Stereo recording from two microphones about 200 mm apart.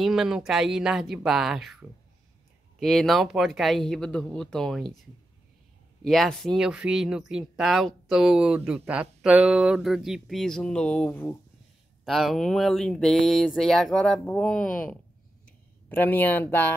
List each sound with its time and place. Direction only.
0.0 s speech: centre (ahead or behind)
6.0 s speech: centre (ahead or behind)
12.0 s speech: centre (ahead or behind)
14.6 s speech: 45° left (ahead or behind)
15.4 s a sound: 10° left (ahead or behind)